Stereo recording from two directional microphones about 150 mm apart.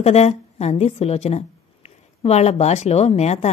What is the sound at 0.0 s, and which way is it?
A woman's voice, 45° left (ahead or behind).